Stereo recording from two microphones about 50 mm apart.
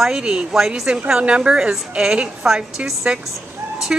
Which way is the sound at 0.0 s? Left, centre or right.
Centre.